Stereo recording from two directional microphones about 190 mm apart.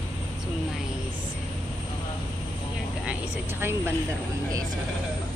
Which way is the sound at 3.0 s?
10° right (ahead or behind).